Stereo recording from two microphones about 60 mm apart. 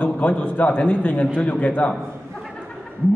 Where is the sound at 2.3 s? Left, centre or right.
Centre.